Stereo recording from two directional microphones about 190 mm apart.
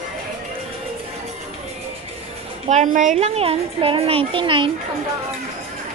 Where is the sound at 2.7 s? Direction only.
40° right (ahead or behind); by 4.7 s 25° right (ahead or behind).